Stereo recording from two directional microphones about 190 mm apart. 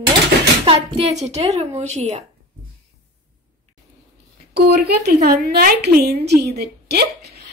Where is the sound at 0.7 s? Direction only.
35° right (ahead or behind).